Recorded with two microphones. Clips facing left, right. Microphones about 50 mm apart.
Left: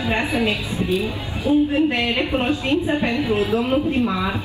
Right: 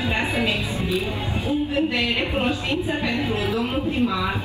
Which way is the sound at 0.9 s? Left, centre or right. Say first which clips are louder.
Left 3 dB; right.